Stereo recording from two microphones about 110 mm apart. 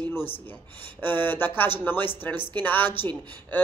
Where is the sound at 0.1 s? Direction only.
20° left (ahead or behind).